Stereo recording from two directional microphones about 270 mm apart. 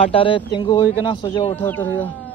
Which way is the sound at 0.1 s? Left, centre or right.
Centre.